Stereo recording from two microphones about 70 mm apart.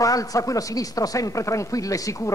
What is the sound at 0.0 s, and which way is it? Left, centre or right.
A man's voice, left.